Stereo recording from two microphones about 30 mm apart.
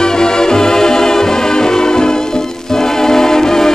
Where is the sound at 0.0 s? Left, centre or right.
Left.